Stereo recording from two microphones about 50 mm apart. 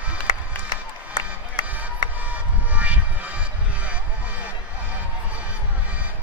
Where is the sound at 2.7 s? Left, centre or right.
Right.